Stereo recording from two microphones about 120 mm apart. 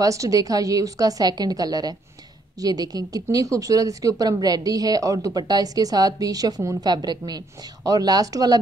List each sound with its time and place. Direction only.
0.0 s a woman's voice: 30° right (ahead or behind)